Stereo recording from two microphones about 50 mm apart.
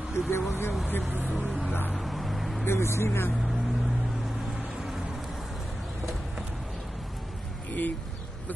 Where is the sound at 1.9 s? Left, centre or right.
Centre.